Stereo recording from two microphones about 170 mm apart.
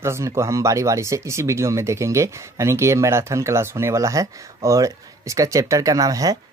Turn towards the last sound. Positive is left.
turn(degrees=-20)  # may be behind; listen again after turning